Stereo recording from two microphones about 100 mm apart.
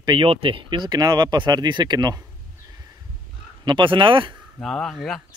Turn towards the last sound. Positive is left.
turn(degrees=0)  # may be behind; listen again after turning